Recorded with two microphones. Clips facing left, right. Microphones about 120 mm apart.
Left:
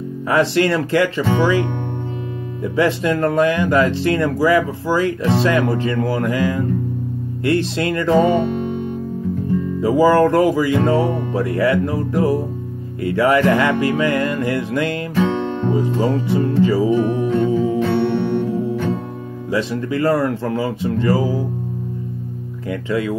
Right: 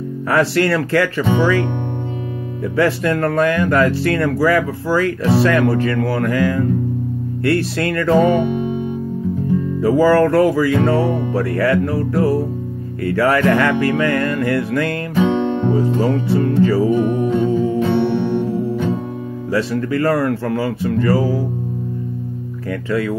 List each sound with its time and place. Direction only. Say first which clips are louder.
0.3 s speech: even; 20° left (ahead or behind)
9.8 s speech: even; 15° left (ahead or behind)
15.1 s guitar: right 4 dB; 15° right (ahead or behind)
15.7 s speech: left 1 dB; 15° left (ahead or behind)
17.5 s music: even; 15° left (ahead or behind)
17.7 s music: right 1 dB; 15° right (ahead or behind)
19.5 s speech: right 2 dB; 20° left (ahead or behind)
22.7 s speech: right 1 dB; 20° left (ahead or behind)